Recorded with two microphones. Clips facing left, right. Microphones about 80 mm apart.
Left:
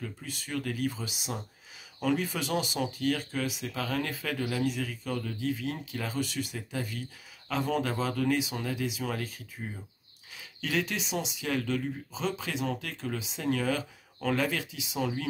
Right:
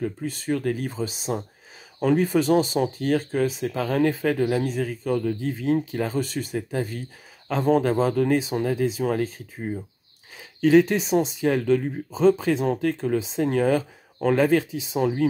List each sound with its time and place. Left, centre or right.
0.0 s speech: right
10.6 s speech: right